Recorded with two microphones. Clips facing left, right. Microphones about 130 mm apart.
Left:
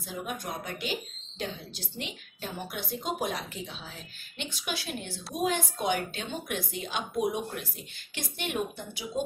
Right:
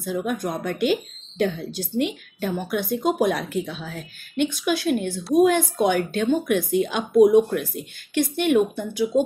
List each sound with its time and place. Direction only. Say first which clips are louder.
0.0 s a woman's voice: right 11 dB; 55° right (ahead or behind)